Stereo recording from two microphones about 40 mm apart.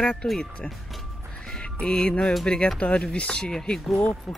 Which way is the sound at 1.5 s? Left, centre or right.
Left.